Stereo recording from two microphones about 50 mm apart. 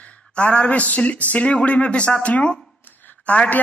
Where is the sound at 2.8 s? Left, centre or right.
Left.